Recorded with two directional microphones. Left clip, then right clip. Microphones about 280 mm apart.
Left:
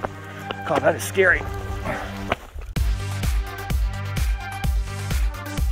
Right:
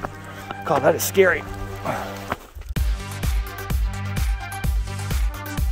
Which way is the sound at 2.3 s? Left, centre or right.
Left.